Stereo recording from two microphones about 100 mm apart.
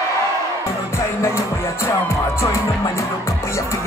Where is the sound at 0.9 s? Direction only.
25° left (ahead or behind).